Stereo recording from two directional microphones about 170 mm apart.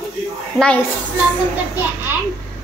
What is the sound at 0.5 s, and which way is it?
Speech, 5° left (ahead or behind).